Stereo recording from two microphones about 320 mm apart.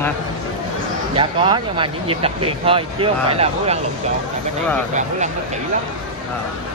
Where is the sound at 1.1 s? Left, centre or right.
Centre.